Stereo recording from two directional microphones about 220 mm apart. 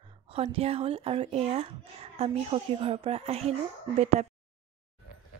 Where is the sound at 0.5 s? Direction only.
25° right (ahead or behind).